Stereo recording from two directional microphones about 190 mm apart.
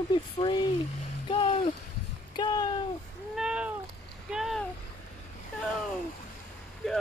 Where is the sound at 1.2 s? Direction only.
25° left (ahead or behind).